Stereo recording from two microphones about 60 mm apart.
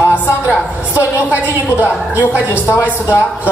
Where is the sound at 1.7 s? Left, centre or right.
Right.